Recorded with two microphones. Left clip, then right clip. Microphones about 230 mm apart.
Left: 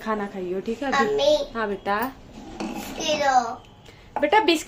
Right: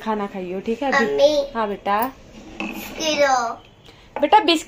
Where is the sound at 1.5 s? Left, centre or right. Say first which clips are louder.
Right 4 dB; centre.